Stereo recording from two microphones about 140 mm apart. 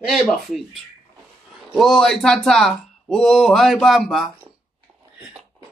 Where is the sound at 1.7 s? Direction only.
Centre (ahead or behind).